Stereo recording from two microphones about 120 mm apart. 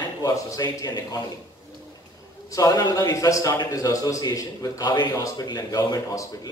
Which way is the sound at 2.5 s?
30° left (ahead or behind).